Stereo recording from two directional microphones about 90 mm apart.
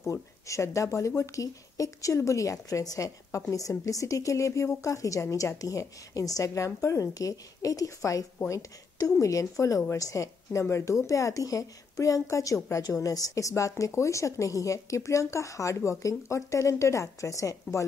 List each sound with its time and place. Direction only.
0.0 s speech: 35° left (ahead or behind)